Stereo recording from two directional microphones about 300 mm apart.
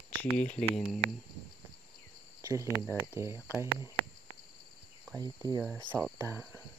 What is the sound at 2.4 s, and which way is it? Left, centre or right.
Cricket, centre.